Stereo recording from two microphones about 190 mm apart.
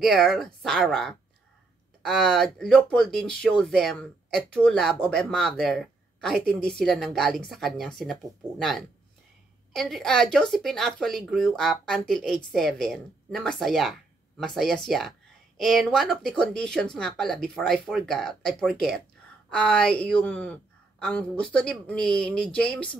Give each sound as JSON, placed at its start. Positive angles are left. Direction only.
{"t": 0.0, "sound": "speech", "side_deg": 0}